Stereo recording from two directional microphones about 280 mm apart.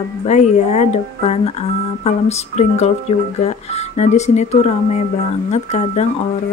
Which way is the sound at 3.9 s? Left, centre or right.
Left.